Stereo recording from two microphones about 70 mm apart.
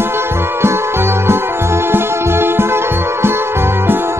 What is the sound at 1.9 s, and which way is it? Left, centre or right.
Music, right.